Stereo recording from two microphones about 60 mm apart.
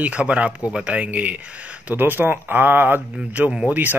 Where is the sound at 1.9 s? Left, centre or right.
Right.